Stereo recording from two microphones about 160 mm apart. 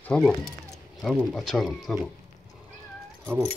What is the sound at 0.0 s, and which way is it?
Speech, 5° left (ahead or behind).